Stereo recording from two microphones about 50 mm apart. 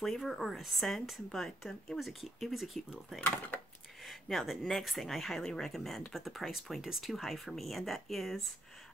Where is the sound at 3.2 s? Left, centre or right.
Left.